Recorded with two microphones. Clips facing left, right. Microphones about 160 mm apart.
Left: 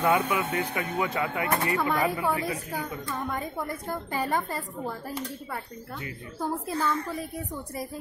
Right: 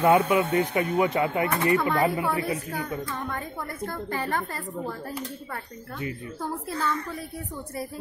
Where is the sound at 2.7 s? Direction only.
10° left (ahead or behind).